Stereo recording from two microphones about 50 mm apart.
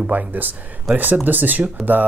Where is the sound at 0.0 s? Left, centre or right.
Right.